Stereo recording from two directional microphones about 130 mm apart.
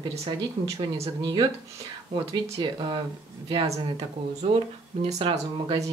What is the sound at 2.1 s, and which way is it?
Speech, 50° right (ahead or behind).